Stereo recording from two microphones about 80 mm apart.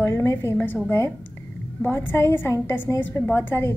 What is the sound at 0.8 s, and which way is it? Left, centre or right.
A woman's voice, left.